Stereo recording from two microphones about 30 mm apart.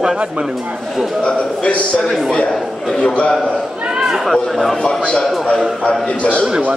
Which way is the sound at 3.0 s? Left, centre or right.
Left.